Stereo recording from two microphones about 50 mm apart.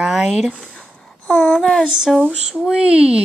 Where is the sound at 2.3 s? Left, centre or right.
Centre.